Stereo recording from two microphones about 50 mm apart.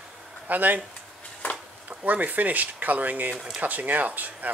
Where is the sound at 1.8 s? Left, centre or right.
Right.